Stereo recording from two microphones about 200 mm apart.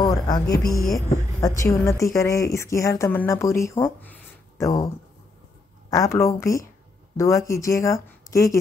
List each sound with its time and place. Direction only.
0.0 s speech: 20° left (ahead or behind)
5.9 s speech: 15° left (ahead or behind)